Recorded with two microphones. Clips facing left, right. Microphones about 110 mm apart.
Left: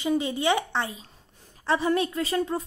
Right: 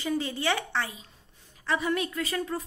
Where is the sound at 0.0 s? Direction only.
20° left (ahead or behind).